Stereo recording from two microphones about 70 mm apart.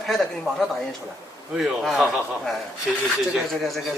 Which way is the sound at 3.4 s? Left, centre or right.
Centre.